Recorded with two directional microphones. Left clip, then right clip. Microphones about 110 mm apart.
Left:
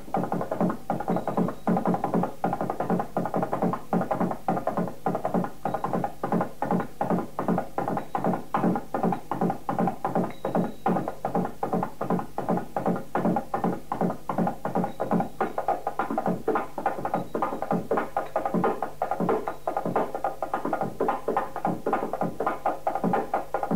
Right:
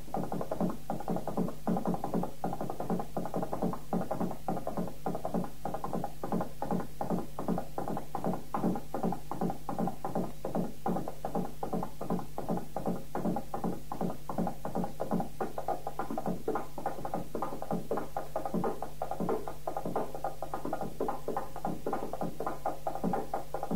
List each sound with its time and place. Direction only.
0.1 s music: 25° right (ahead or behind)